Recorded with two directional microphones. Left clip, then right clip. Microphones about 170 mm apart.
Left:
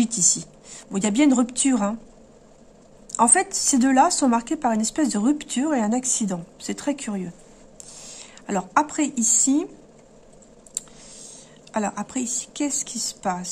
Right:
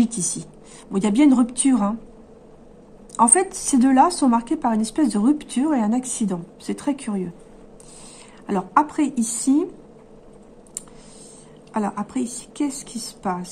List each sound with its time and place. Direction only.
0.0 s a woman's voice: 20° left (ahead or behind)
3.2 s a woman's voice: 20° left (ahead or behind)
8.5 s a woman's voice: 20° left (ahead or behind)
11.7 s a woman's voice: 20° left (ahead or behind)